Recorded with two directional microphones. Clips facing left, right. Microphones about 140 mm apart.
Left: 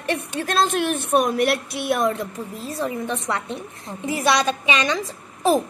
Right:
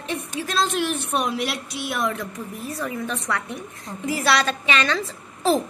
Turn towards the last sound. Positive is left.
turn(degrees=15)  # may be behind; listen again after turning